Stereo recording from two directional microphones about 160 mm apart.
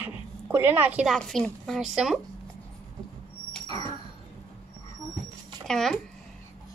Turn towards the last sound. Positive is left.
turn(degrees=5)  # may be behind; listen again after turning